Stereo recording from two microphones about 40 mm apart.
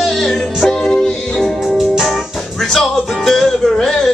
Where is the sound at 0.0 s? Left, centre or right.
Centre.